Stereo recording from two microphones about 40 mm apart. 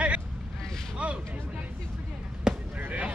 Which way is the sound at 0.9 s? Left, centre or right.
Right.